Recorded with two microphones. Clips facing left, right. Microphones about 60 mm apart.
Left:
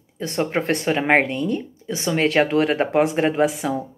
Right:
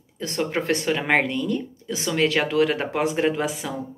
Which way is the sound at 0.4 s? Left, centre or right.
Left.